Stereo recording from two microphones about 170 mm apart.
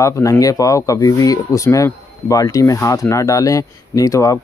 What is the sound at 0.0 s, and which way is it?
Speech, 20° left (ahead or behind).